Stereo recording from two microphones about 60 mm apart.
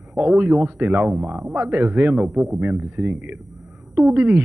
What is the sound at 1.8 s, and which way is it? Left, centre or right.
A man's voice, right.